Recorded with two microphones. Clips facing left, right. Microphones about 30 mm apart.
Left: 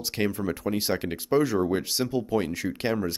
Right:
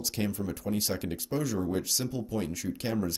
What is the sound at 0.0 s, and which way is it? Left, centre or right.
Speech, left.